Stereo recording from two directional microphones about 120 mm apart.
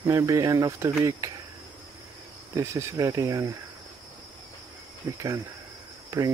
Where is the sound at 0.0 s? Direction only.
30° right (ahead or behind).